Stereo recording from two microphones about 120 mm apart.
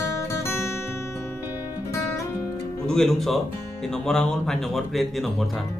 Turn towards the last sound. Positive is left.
turn(degrees=0)  # may be behind; listen again after turning